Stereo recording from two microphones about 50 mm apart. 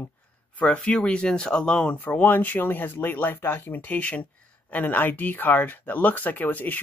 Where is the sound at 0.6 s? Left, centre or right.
Left.